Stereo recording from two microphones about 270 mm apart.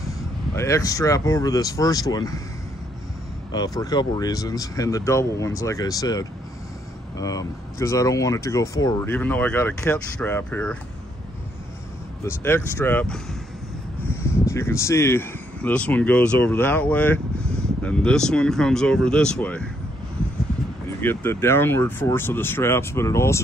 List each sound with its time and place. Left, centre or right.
0.6 s speech: centre
3.5 s speech: centre
12.2 s speech: centre
21.0 s speech: centre